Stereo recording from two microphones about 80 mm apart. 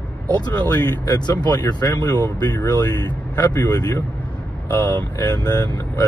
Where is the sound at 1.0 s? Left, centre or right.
Left.